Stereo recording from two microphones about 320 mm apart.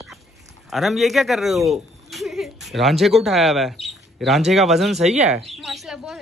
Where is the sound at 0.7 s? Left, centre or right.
Centre.